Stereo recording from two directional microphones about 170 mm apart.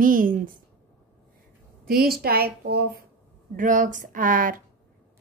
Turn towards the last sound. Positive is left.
turn(degrees=-55)  # may be behind; listen again after turning